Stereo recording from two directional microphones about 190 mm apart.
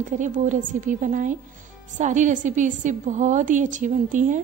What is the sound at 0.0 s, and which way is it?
A woman's voice, 40° right (ahead or behind).